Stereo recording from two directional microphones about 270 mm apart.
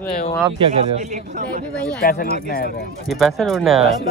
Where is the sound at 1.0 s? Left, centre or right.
Right.